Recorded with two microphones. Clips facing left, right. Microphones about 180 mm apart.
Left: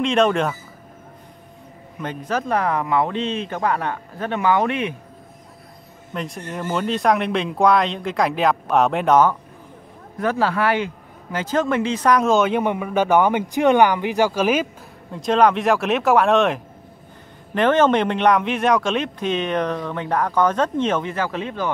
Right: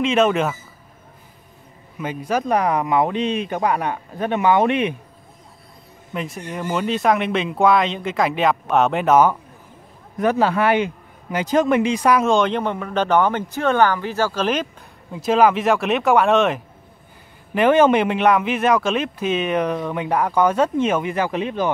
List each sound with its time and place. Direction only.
0.0 s speech: 5° right (ahead or behind)
2.0 s speech: 10° right (ahead or behind)
6.1 s speech: 5° right (ahead or behind)
15.0 s speech: 5° right (ahead or behind)